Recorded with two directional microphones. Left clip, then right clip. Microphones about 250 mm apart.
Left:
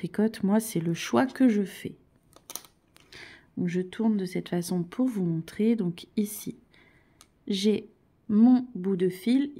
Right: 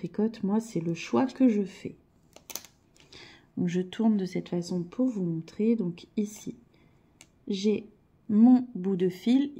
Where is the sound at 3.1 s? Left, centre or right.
Centre.